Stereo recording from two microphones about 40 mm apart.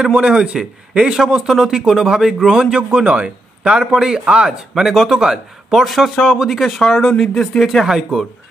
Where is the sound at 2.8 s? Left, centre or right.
Right.